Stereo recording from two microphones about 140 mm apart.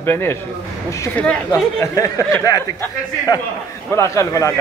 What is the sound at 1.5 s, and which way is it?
Speech, 25° left (ahead or behind).